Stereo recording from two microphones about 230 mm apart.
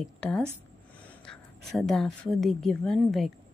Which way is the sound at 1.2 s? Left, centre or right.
Centre.